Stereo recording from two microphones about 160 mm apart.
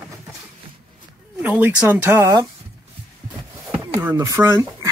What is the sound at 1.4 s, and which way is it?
Speech, 10° right (ahead or behind).